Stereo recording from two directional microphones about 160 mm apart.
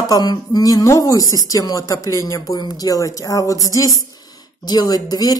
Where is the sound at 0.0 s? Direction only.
25° left (ahead or behind).